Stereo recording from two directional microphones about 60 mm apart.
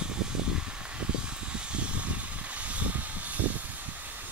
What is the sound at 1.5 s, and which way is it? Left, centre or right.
Vehicle, centre.